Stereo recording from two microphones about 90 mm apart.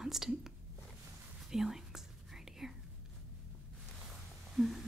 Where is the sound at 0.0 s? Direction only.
5° right (ahead or behind).